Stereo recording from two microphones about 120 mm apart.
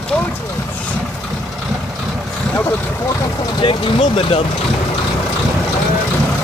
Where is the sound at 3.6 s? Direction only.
45° left (ahead or behind).